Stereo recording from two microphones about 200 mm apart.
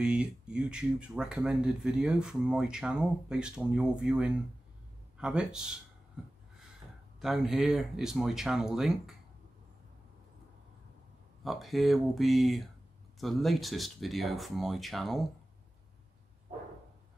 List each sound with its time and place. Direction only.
0.0 s speech: 5° right (ahead or behind)
7.2 s speech: centre (ahead or behind)
11.4 s speech: centre (ahead or behind)
16.5 s a sound: 35° right (ahead or behind)